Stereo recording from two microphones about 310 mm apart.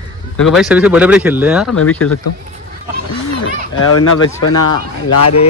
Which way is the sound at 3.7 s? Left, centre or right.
Left.